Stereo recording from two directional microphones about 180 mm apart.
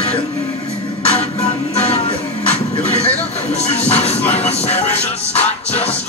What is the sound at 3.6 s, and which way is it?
Music, 35° left (ahead or behind).